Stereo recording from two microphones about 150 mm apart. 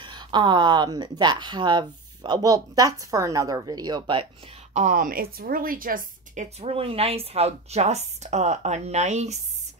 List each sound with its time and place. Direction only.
0.0 s speech: 30° right (ahead or behind)
4.7 s a woman's voice: 60° right (ahead or behind)